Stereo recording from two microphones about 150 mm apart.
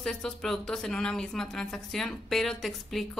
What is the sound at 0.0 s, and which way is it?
A woman's voice, 5° left (ahead or behind).